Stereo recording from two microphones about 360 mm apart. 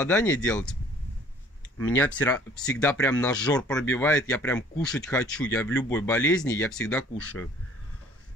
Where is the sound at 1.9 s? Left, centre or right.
Centre.